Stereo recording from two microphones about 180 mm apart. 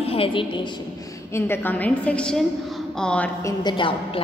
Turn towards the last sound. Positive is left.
turn(degrees=25)  # may be behind; listen again after turning